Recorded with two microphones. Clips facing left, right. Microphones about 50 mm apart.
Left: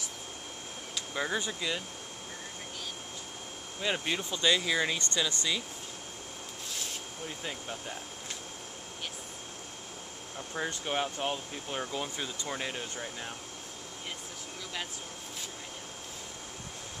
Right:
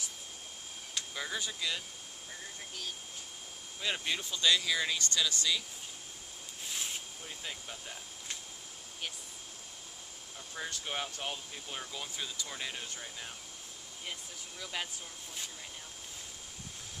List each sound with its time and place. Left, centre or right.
1.1 s speech: left
3.8 s speech: centre
7.2 s speech: centre
10.5 s speech: left